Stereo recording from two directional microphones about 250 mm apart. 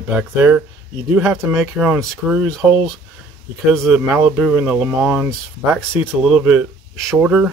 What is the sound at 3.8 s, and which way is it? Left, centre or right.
Speech, centre.